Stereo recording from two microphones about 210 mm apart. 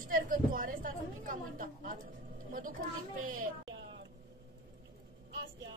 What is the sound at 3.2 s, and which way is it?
Speech, 40° right (ahead or behind).